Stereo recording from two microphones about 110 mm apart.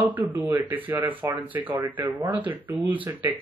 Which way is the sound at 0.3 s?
25° right (ahead or behind).